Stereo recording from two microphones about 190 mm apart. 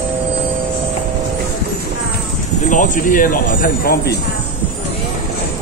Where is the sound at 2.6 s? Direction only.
45° left (ahead or behind).